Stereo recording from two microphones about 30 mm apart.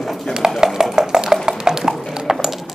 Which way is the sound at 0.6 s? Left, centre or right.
Centre.